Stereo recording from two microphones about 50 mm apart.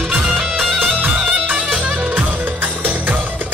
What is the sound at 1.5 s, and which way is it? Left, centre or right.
Music, right.